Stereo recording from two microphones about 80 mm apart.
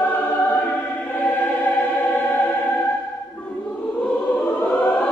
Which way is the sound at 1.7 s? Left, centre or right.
Centre.